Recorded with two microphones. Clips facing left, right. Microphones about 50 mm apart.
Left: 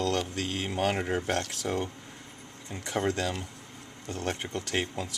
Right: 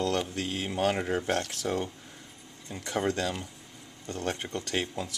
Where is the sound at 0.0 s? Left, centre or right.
Centre.